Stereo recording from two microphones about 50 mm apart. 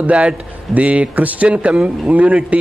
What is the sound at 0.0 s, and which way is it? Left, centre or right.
A man's voice, right.